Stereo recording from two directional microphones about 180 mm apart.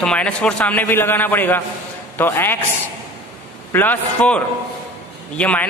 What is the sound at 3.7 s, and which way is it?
A man's voice, 10° left (ahead or behind).